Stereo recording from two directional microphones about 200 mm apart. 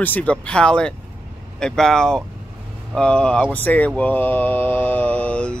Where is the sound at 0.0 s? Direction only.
10° left (ahead or behind).